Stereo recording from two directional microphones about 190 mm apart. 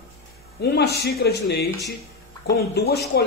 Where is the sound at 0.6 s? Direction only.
60° left (ahead or behind).